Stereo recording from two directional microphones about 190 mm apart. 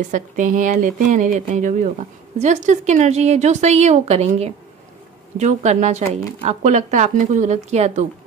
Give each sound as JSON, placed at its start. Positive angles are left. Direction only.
{"t": 0.1, "sound": "speech", "side_deg": -45}